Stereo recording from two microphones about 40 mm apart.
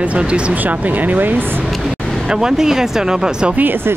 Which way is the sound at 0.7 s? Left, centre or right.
Right.